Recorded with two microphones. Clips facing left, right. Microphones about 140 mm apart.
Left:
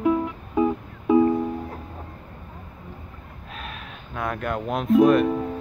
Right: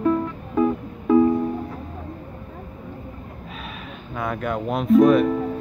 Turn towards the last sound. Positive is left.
turn(degrees=5)  # may be behind; listen again after turning